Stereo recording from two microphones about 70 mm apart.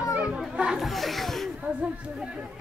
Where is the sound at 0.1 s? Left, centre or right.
Centre.